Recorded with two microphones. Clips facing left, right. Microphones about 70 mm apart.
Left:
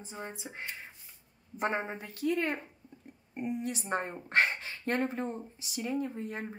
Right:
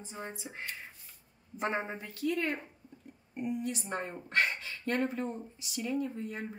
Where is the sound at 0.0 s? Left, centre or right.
Left.